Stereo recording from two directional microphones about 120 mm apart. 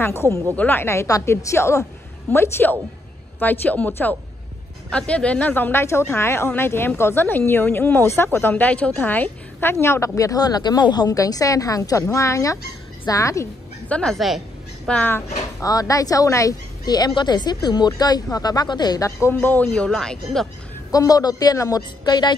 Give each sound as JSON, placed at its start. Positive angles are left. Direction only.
{"t": 0.0, "sound": "a woman's voice", "side_deg": 20}
{"t": 13.8, "sound": "a woman's voice", "side_deg": 10}
{"t": 14.9, "sound": "speech", "side_deg": 15}
{"t": 15.6, "sound": "a woman's voice", "side_deg": 30}
{"t": 19.3, "sound": "speech", "side_deg": 15}
{"t": 20.9, "sound": "a woman's voice", "side_deg": 30}